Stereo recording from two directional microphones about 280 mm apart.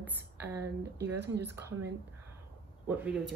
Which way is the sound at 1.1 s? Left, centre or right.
Right.